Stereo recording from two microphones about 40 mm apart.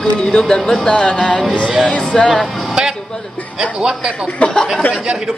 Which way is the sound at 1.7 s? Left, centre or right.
Centre.